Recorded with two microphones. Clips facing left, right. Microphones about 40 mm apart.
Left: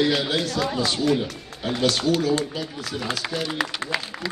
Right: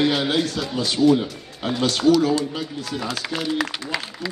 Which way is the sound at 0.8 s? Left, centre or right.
Left.